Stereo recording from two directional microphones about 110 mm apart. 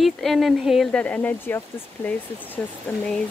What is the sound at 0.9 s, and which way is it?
Speech, 15° left (ahead or behind).